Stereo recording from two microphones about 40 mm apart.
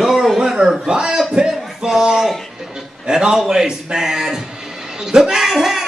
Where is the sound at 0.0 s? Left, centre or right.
Centre.